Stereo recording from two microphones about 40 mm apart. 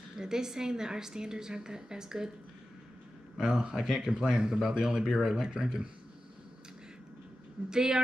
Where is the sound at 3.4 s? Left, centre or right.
Centre.